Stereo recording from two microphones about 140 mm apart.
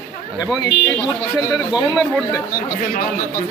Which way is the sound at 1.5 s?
5° right (ahead or behind).